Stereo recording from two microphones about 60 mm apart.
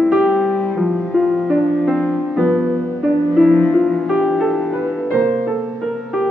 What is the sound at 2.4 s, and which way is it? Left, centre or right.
Music, centre.